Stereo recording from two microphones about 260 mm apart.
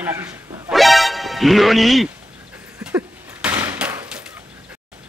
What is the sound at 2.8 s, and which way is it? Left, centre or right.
Slam, centre.